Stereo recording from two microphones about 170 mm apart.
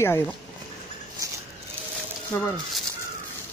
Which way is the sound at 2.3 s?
15° left (ahead or behind).